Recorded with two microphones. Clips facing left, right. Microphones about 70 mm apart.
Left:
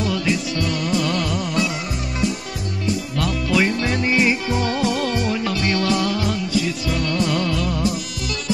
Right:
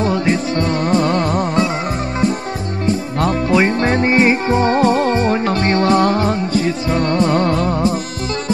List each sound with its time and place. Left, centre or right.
0.0 s music: right
2.9 s music: right